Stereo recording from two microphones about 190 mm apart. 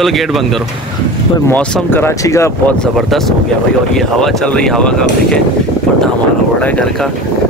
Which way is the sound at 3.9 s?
5° left (ahead or behind).